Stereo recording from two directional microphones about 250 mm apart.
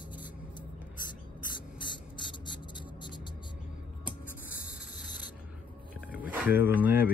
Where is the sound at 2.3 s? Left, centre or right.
Centre.